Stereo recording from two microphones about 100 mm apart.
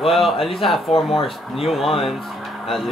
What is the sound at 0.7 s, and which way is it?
Gasp, centre (ahead or behind).